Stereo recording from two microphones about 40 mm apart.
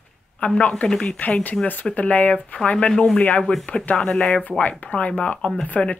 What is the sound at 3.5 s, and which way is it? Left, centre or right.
Speech, left.